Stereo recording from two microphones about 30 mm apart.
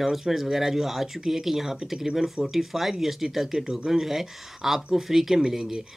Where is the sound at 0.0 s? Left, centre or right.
Centre.